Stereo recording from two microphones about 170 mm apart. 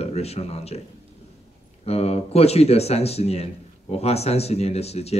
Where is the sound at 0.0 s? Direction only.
40° left (ahead or behind).